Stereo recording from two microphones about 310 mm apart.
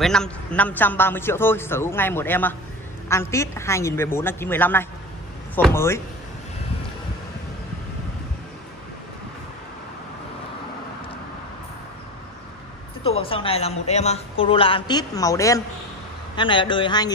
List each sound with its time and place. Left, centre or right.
0.0 s speech: centre
13.0 s speech: centre